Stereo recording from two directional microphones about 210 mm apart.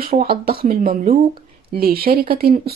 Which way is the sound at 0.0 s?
45° right (ahead or behind).